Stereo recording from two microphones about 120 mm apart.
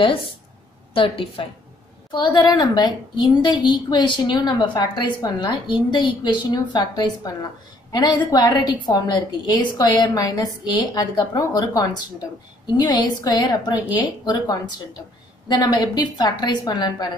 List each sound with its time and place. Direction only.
0.0 s a woman's voice: 45° left (ahead or behind)